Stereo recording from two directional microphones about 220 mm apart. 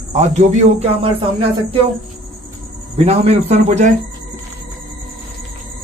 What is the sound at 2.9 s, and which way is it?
Speech, 30° right (ahead or behind).